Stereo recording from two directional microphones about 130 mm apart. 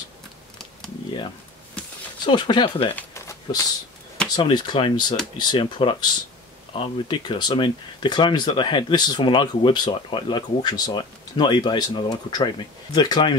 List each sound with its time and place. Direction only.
2.2 s speech: 35° left (ahead or behind)
3.0 s a sound: 20° left (ahead or behind)
4.4 s speech: 35° left (ahead or behind)